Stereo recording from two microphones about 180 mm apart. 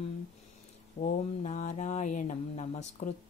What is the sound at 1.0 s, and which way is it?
Speech, 45° left (ahead or behind).